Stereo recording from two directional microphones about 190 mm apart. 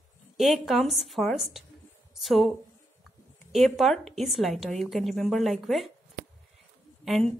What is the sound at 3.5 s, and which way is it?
A woman's voice, centre (ahead or behind).